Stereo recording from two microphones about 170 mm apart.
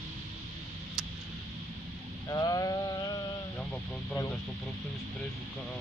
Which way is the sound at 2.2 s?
20° left (ahead or behind).